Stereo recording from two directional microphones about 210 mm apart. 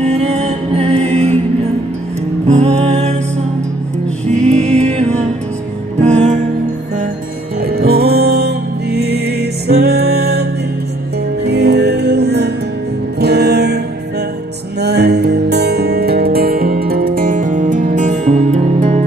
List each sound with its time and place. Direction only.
0.0 s music: 30° right (ahead or behind)
2.4 s music: 30° right (ahead or behind)
4.3 s music: 35° right (ahead or behind)
7.6 s music: 45° right (ahead or behind)
11.4 s music: 50° right (ahead or behind)
14.8 s music: 50° right (ahead or behind); by 19.0 s 35° right (ahead or behind)